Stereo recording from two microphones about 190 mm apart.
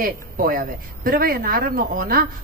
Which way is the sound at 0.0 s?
50° right (ahead or behind).